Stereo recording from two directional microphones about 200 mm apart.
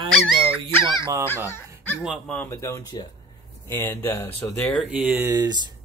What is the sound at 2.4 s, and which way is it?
Speech, 15° left (ahead or behind).